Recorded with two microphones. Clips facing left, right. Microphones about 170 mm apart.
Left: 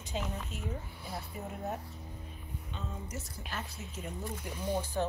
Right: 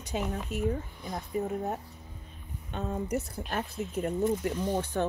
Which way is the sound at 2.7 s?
60° right (ahead or behind).